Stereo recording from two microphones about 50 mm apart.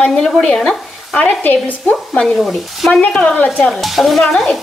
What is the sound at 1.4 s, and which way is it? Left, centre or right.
Speech, left.